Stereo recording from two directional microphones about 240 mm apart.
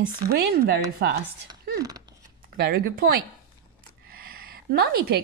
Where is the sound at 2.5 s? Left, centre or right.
Right.